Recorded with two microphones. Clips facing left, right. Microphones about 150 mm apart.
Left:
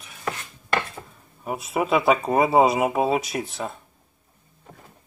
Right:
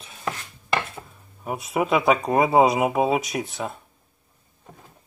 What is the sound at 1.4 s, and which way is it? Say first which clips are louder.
Speech: right 1 dB; centre (ahead or behind).